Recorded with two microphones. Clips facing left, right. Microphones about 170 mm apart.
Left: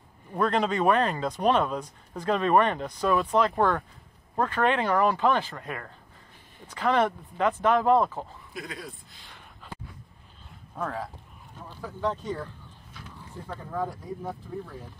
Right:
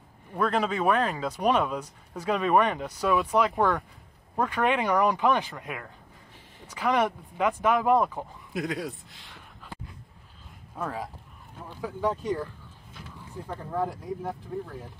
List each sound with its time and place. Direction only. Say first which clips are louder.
0.3 s speech: left 1 dB; 5° right (ahead or behind)
8.5 s speech: right 8 dB; 75° right (ahead or behind)
10.8 s speech: left 1 dB; 10° right (ahead or behind)
13.5 s speech: right 2 dB; 10° right (ahead or behind)